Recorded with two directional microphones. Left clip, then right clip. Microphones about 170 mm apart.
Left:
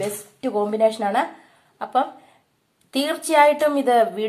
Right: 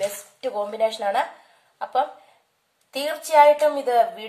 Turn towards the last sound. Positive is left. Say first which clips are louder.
# left 2 dB
turn(degrees=30)  # may be behind; listen again after turning